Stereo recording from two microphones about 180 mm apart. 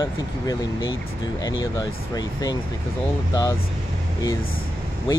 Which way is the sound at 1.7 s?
20° left (ahead or behind).